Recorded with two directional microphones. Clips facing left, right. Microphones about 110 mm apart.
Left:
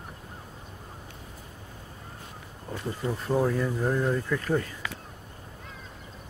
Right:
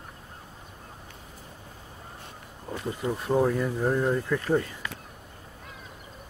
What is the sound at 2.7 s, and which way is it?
Speech, 15° right (ahead or behind).